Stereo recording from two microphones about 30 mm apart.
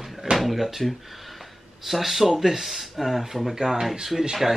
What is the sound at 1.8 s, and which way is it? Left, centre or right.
Speech, centre.